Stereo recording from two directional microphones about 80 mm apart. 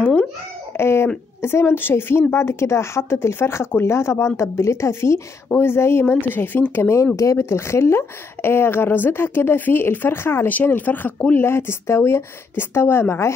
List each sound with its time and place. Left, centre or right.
0.7 s speech: left